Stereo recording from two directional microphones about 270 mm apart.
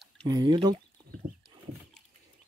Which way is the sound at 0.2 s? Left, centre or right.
Centre.